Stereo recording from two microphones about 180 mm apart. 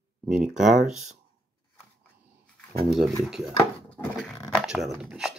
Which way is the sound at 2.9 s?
Centre (ahead or behind).